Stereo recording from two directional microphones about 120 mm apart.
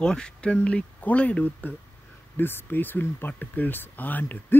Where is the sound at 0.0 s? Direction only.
5° left (ahead or behind).